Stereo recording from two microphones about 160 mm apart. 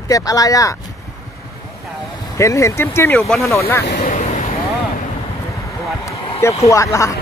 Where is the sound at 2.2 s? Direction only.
20° left (ahead or behind).